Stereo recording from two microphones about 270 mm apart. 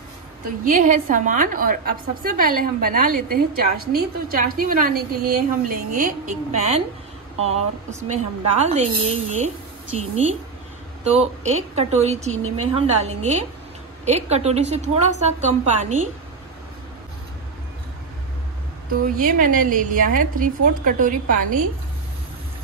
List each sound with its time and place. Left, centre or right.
0.7 s a woman's voice: right
9.9 s a woman's voice: right
19.1 s a woman's voice: right